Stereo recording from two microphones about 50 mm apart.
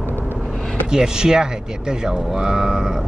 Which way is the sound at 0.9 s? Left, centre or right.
Centre.